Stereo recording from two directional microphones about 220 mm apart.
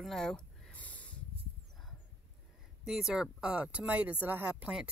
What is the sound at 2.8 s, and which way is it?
Speech, centre (ahead or behind).